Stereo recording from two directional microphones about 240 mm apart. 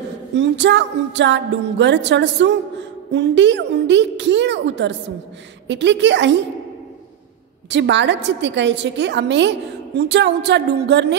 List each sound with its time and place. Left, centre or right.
0.4 s music: right
7.7 s music: right